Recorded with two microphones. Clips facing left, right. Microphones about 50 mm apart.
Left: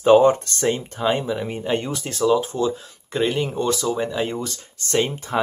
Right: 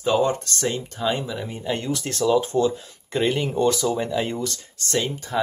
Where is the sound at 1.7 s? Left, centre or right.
Left.